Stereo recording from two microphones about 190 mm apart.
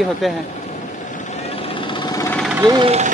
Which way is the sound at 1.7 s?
25° left (ahead or behind).